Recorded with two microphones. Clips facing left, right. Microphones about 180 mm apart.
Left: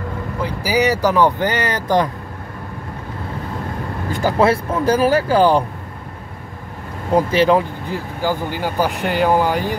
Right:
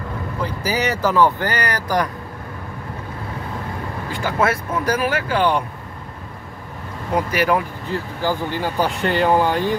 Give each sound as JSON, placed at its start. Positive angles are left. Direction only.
{"t": 0.7, "sound": "speech", "side_deg": 10}
{"t": 4.1, "sound": "speech", "side_deg": 40}
{"t": 7.2, "sound": "speech", "side_deg": 25}
{"t": 7.9, "sound": "speech", "side_deg": 10}